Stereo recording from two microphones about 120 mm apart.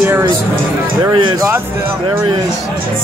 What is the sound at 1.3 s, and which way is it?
Speech, 30° right (ahead or behind).